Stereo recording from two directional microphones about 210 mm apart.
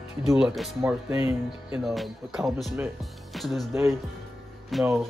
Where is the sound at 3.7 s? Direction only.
15° right (ahead or behind).